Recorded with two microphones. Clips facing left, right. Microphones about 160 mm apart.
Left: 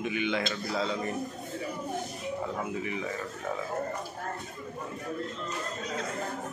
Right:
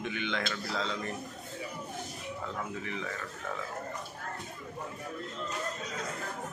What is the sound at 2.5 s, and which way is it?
Speech, 15° left (ahead or behind).